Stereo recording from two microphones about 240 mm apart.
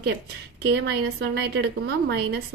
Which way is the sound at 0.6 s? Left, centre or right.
Right.